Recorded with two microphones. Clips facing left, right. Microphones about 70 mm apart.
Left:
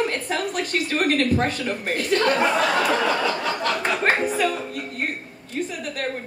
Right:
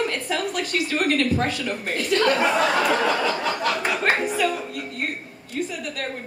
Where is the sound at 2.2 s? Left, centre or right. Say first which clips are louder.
Right 1 dB; centre.